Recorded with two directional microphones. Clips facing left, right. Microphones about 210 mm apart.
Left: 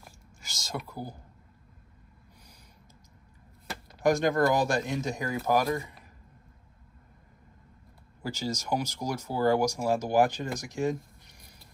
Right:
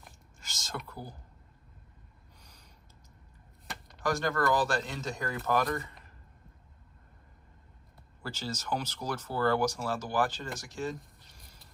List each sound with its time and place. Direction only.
0.0 s a sound: 5° left (ahead or behind)
4.0 s a man's voice: 20° left (ahead or behind)
8.2 s speech: 10° left (ahead or behind)